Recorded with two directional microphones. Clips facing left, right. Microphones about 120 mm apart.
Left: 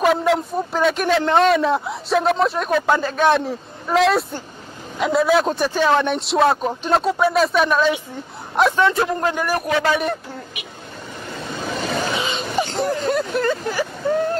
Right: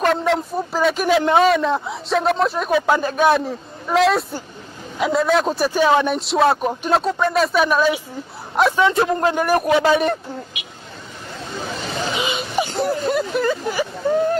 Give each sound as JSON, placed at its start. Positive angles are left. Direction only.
{"t": 0.0, "sound": "a man's voice", "side_deg": 5}
{"t": 3.0, "sound": "speech", "side_deg": -15}
{"t": 3.3, "sound": "speech", "side_deg": 0}
{"t": 5.7, "sound": "speech", "side_deg": -10}
{"t": 6.0, "sound": "speech", "side_deg": 0}
{"t": 8.8, "sound": "a man's voice", "side_deg": -20}
{"t": 12.2, "sound": "a sound", "side_deg": -15}